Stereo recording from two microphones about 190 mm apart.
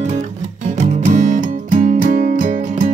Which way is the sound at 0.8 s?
40° right (ahead or behind).